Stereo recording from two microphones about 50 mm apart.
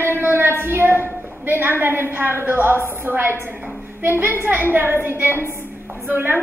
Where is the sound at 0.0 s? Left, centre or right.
Right.